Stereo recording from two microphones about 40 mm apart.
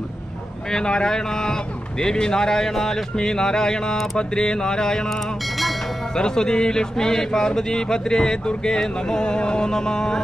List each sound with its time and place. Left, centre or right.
0.7 s speech: centre
6.1 s speech: centre